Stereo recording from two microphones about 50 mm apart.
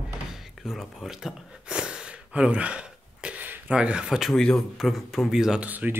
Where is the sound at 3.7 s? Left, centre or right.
Right.